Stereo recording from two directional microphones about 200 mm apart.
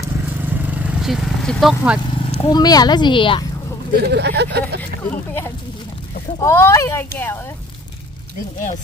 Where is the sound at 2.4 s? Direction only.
20° left (ahead or behind).